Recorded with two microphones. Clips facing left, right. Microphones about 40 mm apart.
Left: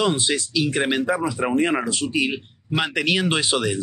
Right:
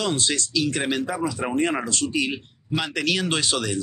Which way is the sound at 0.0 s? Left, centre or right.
Centre.